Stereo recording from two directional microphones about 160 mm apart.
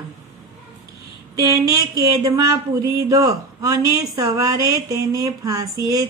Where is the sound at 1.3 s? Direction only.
20° right (ahead or behind).